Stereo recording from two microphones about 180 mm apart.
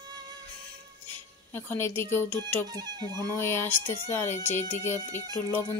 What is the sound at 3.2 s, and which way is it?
Speech, 10° left (ahead or behind).